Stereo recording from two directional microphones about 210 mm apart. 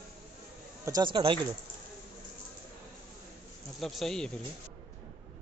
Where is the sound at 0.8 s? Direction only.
20° right (ahead or behind).